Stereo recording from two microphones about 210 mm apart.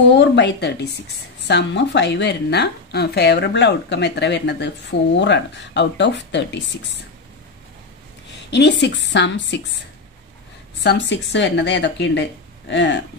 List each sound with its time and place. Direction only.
0.2 s a woman's voice: 55° left (ahead or behind)
8.5 s a woman's voice: 55° left (ahead or behind)
10.8 s a woman's voice: 55° left (ahead or behind)